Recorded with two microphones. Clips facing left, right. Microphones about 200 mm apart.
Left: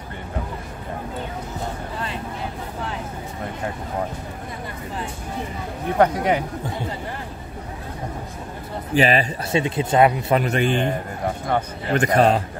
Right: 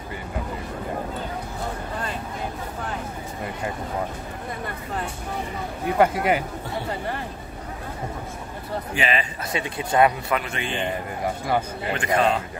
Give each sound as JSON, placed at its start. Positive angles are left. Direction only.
{"t": 5.9, "sound": "speech", "side_deg": -5}
{"t": 8.9, "sound": "a man's voice", "side_deg": 40}
{"t": 9.5, "sound": "speech", "side_deg": 25}
{"t": 10.3, "sound": "a man's voice", "side_deg": 40}
{"t": 11.9, "sound": "a man's voice", "side_deg": 40}